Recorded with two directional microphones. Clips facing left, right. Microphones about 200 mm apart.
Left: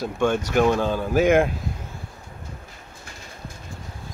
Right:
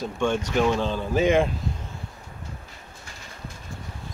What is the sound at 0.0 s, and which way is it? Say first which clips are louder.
Speech: left 3 dB; 5° left (ahead or behind).